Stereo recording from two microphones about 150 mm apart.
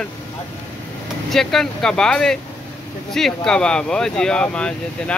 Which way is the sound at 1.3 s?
5° left (ahead or behind).